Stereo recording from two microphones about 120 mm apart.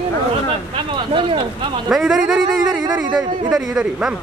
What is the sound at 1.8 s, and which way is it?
Speech, centre (ahead or behind).